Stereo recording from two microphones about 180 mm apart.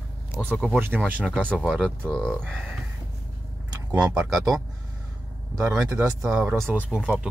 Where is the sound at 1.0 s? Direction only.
10° right (ahead or behind).